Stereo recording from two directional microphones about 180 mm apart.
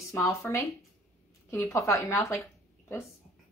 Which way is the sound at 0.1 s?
15° left (ahead or behind).